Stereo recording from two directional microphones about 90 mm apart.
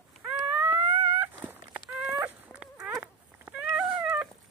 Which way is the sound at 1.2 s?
20° right (ahead or behind).